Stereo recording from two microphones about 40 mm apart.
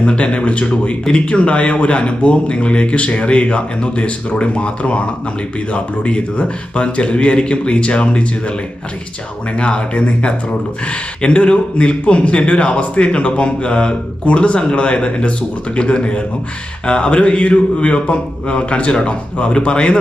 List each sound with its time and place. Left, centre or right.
0.0 s speech: left
9.6 s speech: left